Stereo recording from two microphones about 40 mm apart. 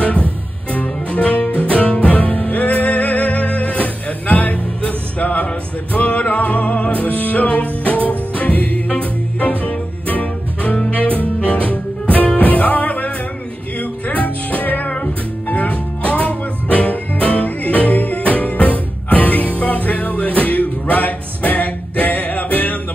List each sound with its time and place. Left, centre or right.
0.0 s music: left